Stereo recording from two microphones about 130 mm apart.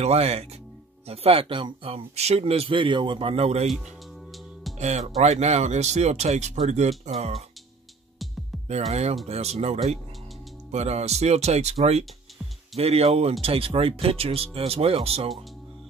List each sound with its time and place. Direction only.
0.0 s speech: 55° right (ahead or behind)
4.7 s speech: 60° right (ahead or behind)
8.6 s speech: 55° right (ahead or behind)